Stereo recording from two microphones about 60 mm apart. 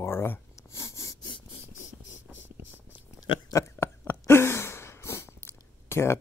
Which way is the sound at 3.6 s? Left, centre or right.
Left.